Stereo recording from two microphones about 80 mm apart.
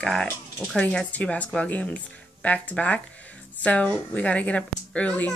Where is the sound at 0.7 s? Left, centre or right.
Centre.